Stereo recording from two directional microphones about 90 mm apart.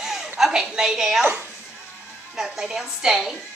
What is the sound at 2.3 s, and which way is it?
A woman's voice, 5° right (ahead or behind).